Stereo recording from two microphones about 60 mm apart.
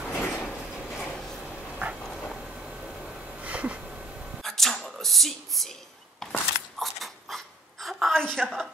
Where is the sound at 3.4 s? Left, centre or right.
Right.